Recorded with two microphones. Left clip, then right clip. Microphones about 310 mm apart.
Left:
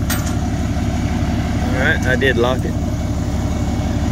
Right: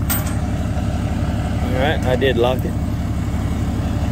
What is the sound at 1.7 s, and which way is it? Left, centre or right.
Speech, centre.